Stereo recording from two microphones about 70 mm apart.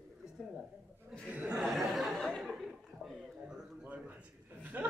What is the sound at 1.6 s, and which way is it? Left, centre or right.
Speech, centre.